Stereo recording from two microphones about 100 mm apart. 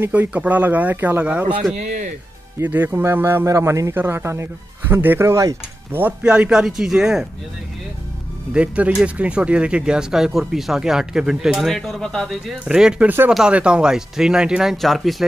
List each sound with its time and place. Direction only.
0.0 s speech: 15° right (ahead or behind)
2.6 s speech: 20° right (ahead or behind)
5.9 s speech: 20° right (ahead or behind)
6.2 s speech: 10° right (ahead or behind)
8.5 s speech: 15° right (ahead or behind); by 12.5 s 5° left (ahead or behind)
12.6 s speech: 10° right (ahead or behind)